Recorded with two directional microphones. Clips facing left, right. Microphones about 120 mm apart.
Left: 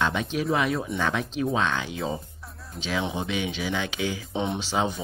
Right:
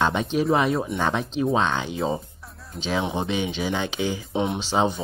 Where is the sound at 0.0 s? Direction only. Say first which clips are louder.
Right 4 dB; 30° right (ahead or behind).